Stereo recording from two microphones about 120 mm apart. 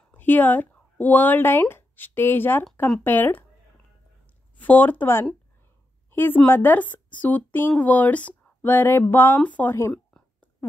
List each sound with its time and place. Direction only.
0.0 s speech: 15° left (ahead or behind)
4.6 s speech: 15° left (ahead or behind)